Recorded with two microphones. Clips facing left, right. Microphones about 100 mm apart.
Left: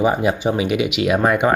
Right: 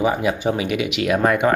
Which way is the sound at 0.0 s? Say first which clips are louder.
Left 2 dB; 25° left (ahead or behind).